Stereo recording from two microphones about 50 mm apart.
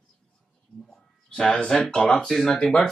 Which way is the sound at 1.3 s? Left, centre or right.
Centre.